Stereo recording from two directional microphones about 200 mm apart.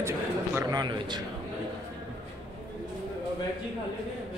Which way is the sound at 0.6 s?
20° right (ahead or behind).